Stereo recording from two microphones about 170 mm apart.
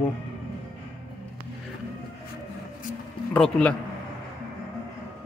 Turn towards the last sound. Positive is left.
turn(degrees=5)  # may be behind; listen again after turning